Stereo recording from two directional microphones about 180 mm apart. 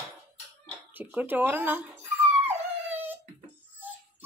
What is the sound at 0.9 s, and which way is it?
Speech, 10° right (ahead or behind).